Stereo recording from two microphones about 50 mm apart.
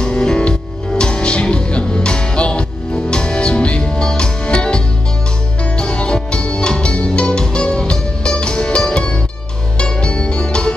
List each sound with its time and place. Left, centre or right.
0.0 s music: centre